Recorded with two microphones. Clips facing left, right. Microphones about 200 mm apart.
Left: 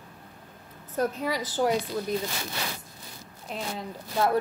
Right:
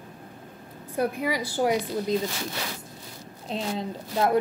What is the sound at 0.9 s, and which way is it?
Speech, 10° right (ahead or behind).